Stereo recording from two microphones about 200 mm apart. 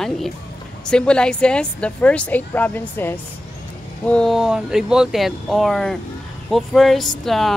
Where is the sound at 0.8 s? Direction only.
5° left (ahead or behind).